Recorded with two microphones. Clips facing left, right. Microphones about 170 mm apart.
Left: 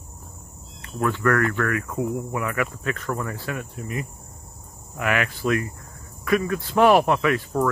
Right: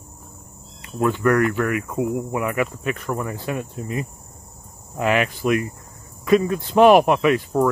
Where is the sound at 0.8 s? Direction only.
20° right (ahead or behind).